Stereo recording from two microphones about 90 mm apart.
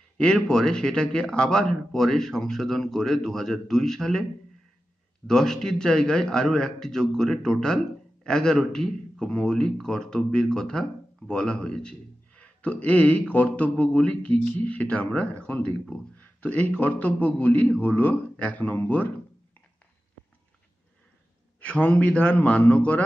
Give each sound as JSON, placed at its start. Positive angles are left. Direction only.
{"t": 0.2, "sound": "a man's voice", "side_deg": 10}
{"t": 21.5, "sound": "a man's voice", "side_deg": 15}